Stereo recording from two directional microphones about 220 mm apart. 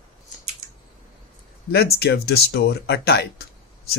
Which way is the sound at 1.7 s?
45° left (ahead or behind).